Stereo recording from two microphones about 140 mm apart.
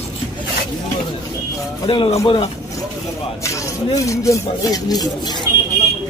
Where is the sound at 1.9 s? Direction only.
40° left (ahead or behind).